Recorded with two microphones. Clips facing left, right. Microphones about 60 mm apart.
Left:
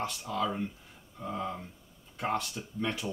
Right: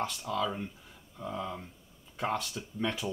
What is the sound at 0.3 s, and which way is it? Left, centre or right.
Speech, centre.